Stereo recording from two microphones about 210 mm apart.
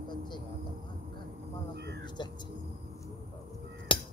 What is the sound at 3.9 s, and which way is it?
Crow, 25° left (ahead or behind).